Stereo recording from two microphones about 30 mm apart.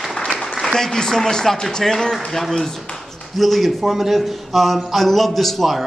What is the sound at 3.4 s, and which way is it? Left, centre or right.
A man's voice, centre.